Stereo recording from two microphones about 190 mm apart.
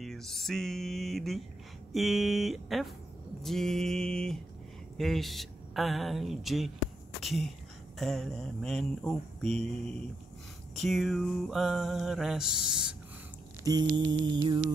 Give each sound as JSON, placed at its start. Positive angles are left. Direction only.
{"t": 0.0, "sound": "music", "side_deg": 0}
{"t": 10.8, "sound": "music", "side_deg": 0}
{"t": 13.7, "sound": "a sound", "side_deg": -20}